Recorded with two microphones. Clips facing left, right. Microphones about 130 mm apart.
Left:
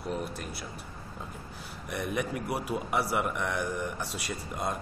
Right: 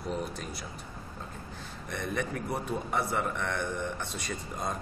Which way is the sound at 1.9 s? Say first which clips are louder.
Left 2 dB; 10° left (ahead or behind).